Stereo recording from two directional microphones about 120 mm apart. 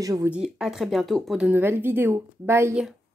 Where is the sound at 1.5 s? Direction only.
15° right (ahead or behind).